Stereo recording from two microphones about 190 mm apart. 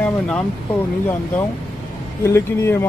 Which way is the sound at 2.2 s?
15° left (ahead or behind).